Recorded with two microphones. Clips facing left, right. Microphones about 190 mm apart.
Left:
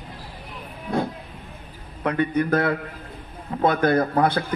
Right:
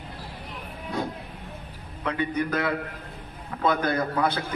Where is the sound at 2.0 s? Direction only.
50° left (ahead or behind).